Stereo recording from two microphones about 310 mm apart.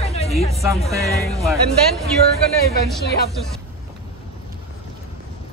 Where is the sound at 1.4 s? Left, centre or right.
Centre.